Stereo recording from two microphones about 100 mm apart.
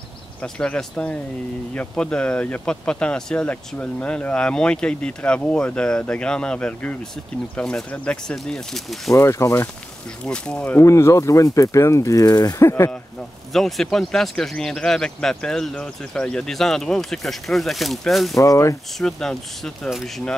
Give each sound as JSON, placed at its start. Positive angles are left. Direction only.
{"t": 0.4, "sound": "speech", "side_deg": 10}
{"t": 9.1, "sound": "speech", "side_deg": 30}
{"t": 10.2, "sound": "speech", "side_deg": 10}
{"t": 10.8, "sound": "speech", "side_deg": 30}
{"t": 12.6, "sound": "speech", "side_deg": 25}
{"t": 13.5, "sound": "speech", "side_deg": 0}
{"t": 18.4, "sound": "speech", "side_deg": 30}
{"t": 18.9, "sound": "speech", "side_deg": 5}